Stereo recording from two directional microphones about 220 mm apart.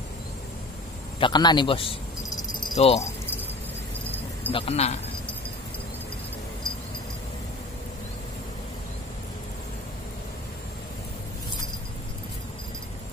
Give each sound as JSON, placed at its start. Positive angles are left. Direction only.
{"t": 1.2, "sound": "a man's voice", "side_deg": 20}
{"t": 4.5, "sound": "a man's voice", "side_deg": 25}